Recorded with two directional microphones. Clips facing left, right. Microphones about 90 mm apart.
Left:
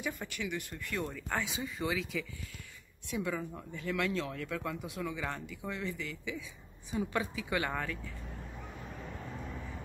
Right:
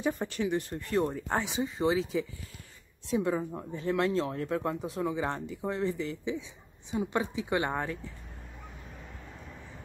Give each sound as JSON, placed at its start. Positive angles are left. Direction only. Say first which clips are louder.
{"t": 0.0, "sound": "a woman's voice", "louder": "right 8 dB", "side_deg": -35}